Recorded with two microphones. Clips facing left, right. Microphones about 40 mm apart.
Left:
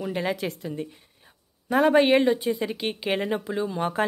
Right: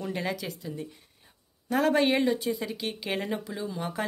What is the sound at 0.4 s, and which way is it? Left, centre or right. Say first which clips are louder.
Speech: left 6 dB; left.